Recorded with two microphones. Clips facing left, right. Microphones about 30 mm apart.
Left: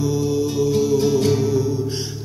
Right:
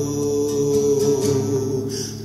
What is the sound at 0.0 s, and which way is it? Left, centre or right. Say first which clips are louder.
Music: even; left.